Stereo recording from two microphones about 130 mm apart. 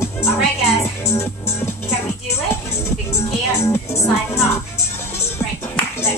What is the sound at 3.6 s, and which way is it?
Speech, 20° left (ahead or behind).